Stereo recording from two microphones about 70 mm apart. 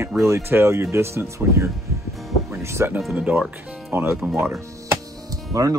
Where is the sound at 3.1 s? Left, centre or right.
Centre.